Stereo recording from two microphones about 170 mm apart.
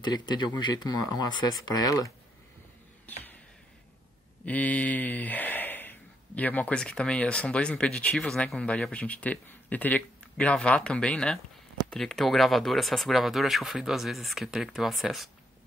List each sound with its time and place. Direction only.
0.0 s speech: 25° left (ahead or behind)
4.5 s speech: 10° left (ahead or behind)